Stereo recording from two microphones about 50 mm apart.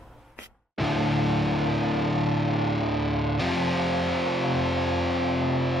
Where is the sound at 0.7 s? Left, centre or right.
Centre.